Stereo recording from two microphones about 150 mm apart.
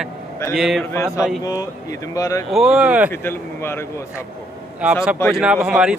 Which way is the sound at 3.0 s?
15° left (ahead or behind).